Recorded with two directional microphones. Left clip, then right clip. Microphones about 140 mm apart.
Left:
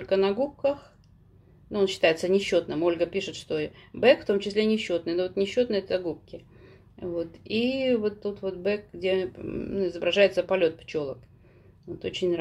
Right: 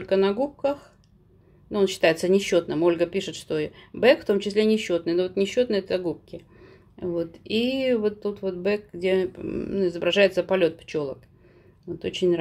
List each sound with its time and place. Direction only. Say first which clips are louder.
0.0 s speech: right 2 dB; 25° right (ahead or behind)